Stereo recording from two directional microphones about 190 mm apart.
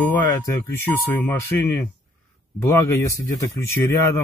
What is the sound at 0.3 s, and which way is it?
A man's voice, 15° left (ahead or behind).